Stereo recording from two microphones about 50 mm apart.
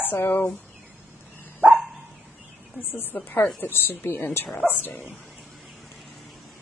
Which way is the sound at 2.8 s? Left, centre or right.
Left.